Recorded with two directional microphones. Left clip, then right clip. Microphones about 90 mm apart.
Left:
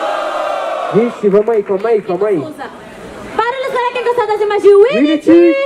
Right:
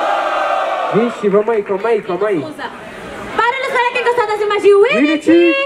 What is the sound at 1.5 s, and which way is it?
Speech, 25° right (ahead or behind).